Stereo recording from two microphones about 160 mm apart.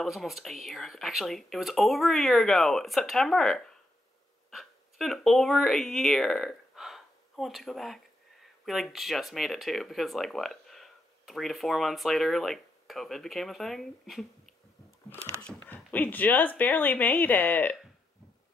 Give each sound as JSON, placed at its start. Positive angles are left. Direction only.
{"t": 0.0, "sound": "speech", "side_deg": 0}